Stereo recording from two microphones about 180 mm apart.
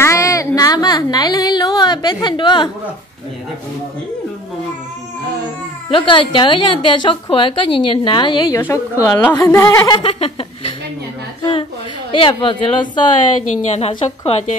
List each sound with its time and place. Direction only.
0.0 s a sound: 15° left (ahead or behind)
5.9 s a woman's voice: 30° left (ahead or behind)
12.1 s a woman's voice: 30° left (ahead or behind)
13.6 s a woman's voice: 35° left (ahead or behind)